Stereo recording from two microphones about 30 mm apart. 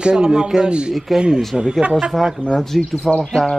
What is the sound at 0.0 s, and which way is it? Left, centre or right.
Speech, right.